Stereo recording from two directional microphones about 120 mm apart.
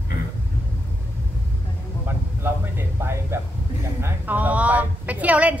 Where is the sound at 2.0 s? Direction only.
20° right (ahead or behind).